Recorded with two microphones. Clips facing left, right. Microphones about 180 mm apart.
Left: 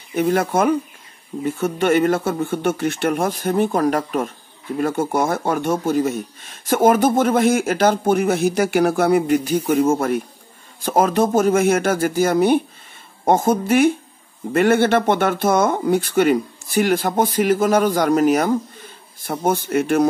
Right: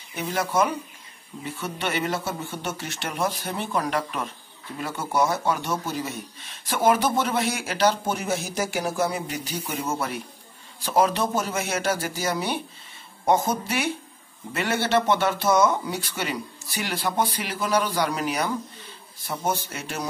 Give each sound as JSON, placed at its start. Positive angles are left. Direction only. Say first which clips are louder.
{"t": 0.1, "sound": "speech", "louder": "left 8 dB", "side_deg": 50}